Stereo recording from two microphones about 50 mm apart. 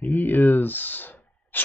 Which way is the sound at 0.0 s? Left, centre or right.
Left.